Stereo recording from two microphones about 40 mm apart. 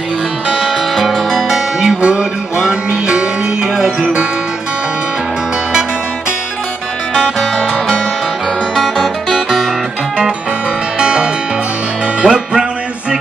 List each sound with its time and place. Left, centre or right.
0.5 s music: centre
1.5 s music: centre
3.7 s music: centre
8.7 s music: centre
11.0 s music: centre